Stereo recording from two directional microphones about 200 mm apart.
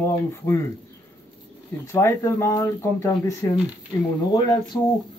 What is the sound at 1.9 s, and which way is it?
Speech, 15° left (ahead or behind).